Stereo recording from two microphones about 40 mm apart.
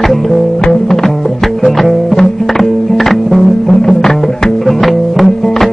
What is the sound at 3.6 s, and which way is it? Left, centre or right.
Music, centre.